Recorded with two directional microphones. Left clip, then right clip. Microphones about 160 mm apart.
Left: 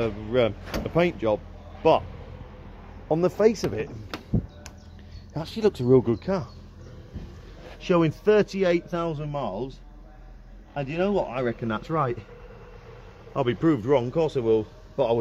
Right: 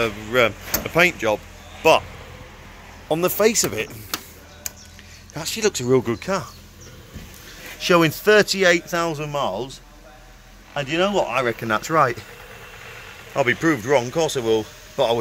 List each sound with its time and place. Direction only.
0.0 s speech: 5° left (ahead or behind)
3.1 s speech: 5° left (ahead or behind)
5.3 s speech: 20° left (ahead or behind)
5.9 s speech: 10° left (ahead or behind)
7.8 s a man's voice: 15° right (ahead or behind)
9.3 s speech: 30° right (ahead or behind); by 12.2 s 10° right (ahead or behind)
13.4 s speech: 10° left (ahead or behind)